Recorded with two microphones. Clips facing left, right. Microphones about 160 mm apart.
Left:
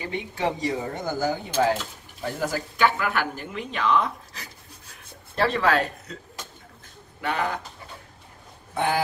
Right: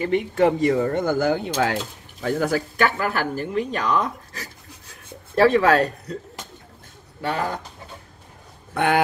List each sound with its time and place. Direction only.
0.0 s speech: 55° right (ahead or behind)
3.0 s speech: 40° right (ahead or behind)
7.2 s speech: 35° right (ahead or behind)
8.7 s a sound: 65° right (ahead or behind)